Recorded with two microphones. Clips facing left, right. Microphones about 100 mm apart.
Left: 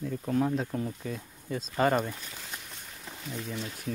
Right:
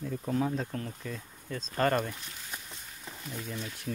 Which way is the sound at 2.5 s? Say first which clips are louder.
Left 1 dB; centre (ahead or behind).